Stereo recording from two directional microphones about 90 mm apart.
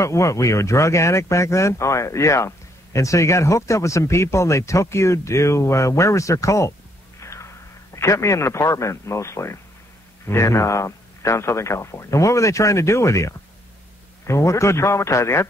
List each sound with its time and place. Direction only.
0.0 s speech: 35° left (ahead or behind)
7.2 s a sound: 35° left (ahead or behind)
7.9 s speech: 35° left (ahead or behind)